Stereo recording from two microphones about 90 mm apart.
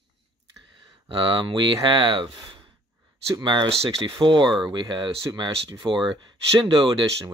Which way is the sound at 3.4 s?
55° right (ahead or behind).